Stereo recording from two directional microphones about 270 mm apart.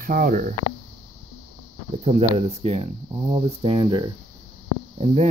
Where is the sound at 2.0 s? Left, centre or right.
Right.